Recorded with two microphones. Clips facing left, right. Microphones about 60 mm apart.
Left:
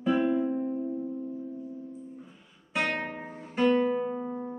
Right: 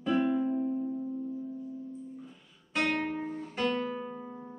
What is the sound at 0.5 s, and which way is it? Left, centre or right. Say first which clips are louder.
Music: even; left.